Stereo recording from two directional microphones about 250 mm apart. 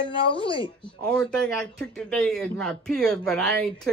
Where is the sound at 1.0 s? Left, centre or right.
Centre.